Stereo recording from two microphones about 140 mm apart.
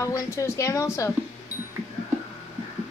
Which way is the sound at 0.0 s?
20° left (ahead or behind).